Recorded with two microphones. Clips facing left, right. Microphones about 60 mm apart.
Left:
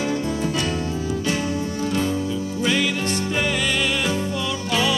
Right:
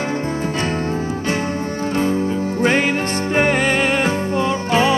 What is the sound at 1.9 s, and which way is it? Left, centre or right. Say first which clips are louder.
Music: right 7 dB; right.